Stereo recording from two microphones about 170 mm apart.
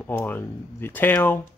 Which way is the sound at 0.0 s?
10° left (ahead or behind).